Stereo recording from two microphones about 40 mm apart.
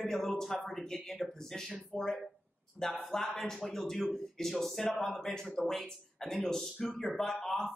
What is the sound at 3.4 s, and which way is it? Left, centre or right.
Speech, centre.